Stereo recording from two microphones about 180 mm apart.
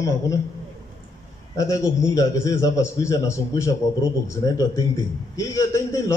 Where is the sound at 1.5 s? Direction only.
20° left (ahead or behind).